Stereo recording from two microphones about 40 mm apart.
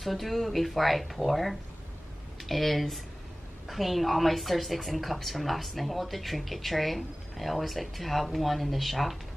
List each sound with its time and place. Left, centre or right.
0.0 s a woman's voice: centre